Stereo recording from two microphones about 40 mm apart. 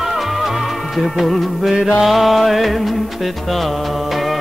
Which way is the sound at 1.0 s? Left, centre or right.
Centre.